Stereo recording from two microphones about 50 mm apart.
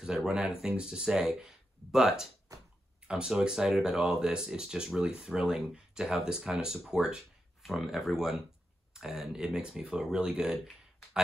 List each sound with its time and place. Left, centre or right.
0.0 s speech: centre
7.6 s speech: centre